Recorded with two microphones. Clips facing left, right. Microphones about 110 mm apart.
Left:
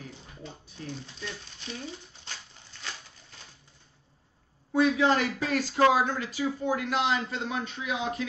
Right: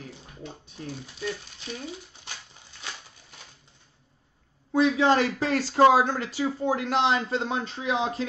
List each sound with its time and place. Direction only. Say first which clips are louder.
0.5 s speech: right 2 dB; 10° right (ahead or behind)
4.7 s speech: right 2 dB; 30° right (ahead or behind)